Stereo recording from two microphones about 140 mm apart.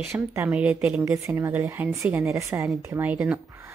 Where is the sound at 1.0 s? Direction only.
20° right (ahead or behind).